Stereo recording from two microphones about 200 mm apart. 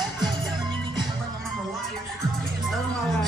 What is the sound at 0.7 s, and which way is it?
Music, 25° right (ahead or behind).